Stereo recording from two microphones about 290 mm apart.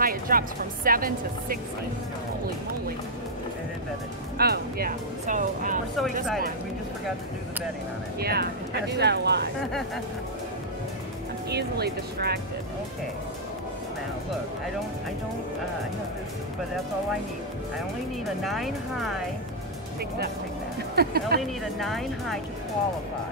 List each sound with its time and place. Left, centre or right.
0.0 s speech: right
4.4 s speech: right
8.2 s speech: right
11.5 s speech: right
18.4 s speech: centre
20.9 s speech: right
21.4 s speech: centre